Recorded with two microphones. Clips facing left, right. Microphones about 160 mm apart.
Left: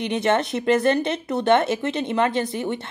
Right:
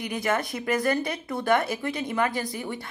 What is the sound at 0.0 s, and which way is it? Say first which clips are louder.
Speech: left 6 dB; 25° left (ahead or behind).